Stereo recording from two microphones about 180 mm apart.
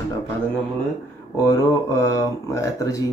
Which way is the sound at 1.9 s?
20° left (ahead or behind).